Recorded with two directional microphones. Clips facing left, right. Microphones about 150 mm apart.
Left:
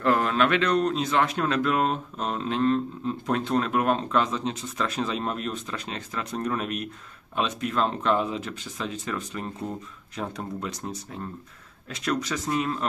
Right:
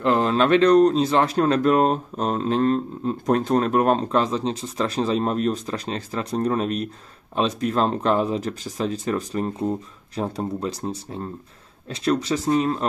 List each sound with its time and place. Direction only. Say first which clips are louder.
0.0 s speech: right 3 dB; 25° right (ahead or behind)